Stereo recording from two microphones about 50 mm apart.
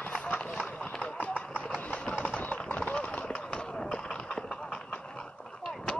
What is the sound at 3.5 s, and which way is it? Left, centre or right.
Run, centre.